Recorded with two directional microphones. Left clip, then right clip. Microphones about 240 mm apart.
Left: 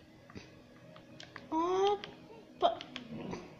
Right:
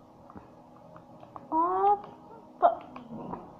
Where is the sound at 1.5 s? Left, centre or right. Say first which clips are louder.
Right 6 dB; left.